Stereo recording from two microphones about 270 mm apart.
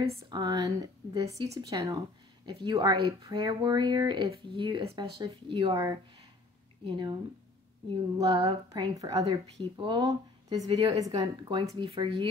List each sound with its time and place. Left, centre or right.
0.3 s speech: centre
8.2 s speech: centre